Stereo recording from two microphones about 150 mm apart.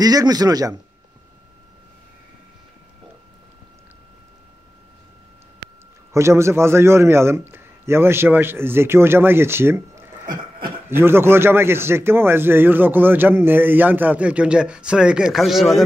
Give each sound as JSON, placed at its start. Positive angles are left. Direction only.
{"t": 0.0, "sound": "a man's voice", "side_deg": -25}
{"t": 6.1, "sound": "a man's voice", "side_deg": -20}
{"t": 10.2, "sound": "a sound", "side_deg": -30}
{"t": 10.9, "sound": "a man's voice", "side_deg": -15}